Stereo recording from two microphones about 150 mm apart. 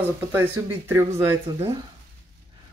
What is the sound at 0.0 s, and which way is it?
A woman's voice, 15° right (ahead or behind).